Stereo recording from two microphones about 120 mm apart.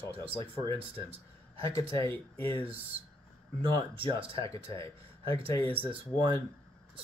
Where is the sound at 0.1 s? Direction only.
55° right (ahead or behind).